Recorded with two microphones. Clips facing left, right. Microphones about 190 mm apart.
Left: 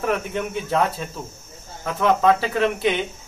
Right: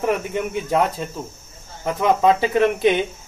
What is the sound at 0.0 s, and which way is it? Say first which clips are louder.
Speech: right 2 dB; 15° right (ahead or behind).